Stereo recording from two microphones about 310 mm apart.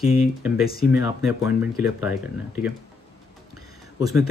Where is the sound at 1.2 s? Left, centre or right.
Centre.